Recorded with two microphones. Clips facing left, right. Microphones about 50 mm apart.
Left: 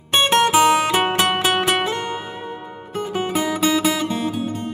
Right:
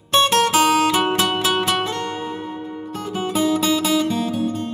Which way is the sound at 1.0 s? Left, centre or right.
Left.